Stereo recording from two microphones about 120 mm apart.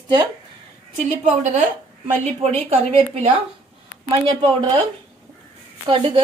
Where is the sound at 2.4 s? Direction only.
60° right (ahead or behind).